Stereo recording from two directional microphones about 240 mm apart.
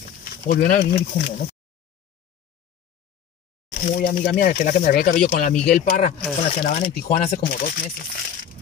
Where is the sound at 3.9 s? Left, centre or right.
Left.